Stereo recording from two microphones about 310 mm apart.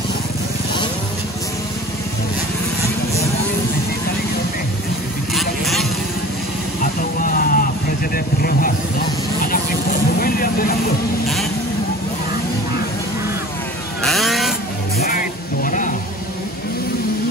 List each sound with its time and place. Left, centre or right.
5.3 s vehicle: centre
7.2 s vehicle: left
10.1 s vehicle: left
14.0 s vehicle: centre
15.0 s a sound: left